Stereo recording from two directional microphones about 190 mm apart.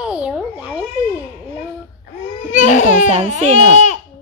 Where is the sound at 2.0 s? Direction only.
40° left (ahead or behind).